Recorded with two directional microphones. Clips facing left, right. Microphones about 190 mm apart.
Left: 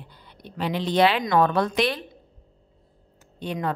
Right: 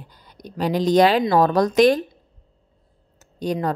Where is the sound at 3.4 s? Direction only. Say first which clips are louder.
Right 6 dB; 40° right (ahead or behind).